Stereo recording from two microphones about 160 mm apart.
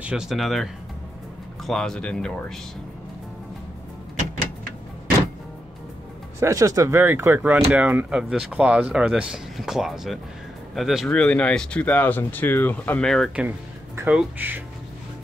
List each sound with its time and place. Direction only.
0.0 s speech: 5° right (ahead or behind)
6.4 s speech: 20° right (ahead or behind); by 13.3 s 5° left (ahead or behind)
13.4 s speech: 10° right (ahead or behind)